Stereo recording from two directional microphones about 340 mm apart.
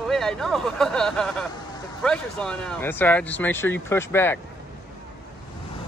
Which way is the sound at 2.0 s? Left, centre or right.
Centre.